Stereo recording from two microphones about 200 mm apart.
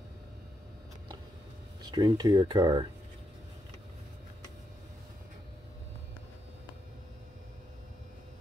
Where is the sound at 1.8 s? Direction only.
20° right (ahead or behind).